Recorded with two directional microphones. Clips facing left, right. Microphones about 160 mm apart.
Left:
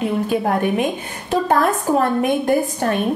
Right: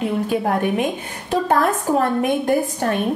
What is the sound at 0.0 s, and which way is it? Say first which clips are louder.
A woman's voice: left 1 dB; 15° left (ahead or behind).